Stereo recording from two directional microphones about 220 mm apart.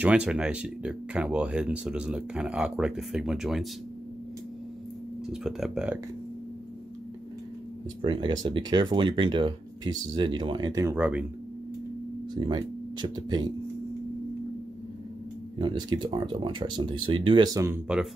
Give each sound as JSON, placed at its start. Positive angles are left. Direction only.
{"t": 0.0, "sound": "speech", "side_deg": -5}
{"t": 5.3, "sound": "speech", "side_deg": 0}
{"t": 8.0, "sound": "speech", "side_deg": -20}
{"t": 12.4, "sound": "speech", "side_deg": -20}
{"t": 15.6, "sound": "speech", "side_deg": -20}